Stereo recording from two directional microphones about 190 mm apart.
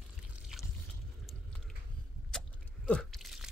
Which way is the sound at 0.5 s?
Centre (ahead or behind).